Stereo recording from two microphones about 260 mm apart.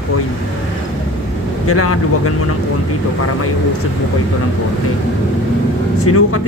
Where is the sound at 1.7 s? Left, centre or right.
Left.